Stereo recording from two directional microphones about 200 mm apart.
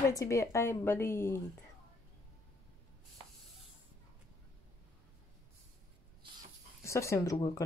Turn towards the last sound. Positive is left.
turn(degrees=15)  # may be behind; listen again after turning